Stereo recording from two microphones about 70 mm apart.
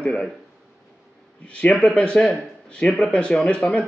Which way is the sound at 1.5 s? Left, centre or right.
Centre.